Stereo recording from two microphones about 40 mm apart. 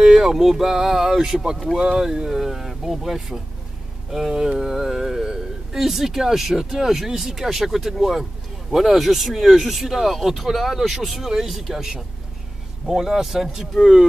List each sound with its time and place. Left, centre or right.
0.0 s speech: centre
2.4 s speech: centre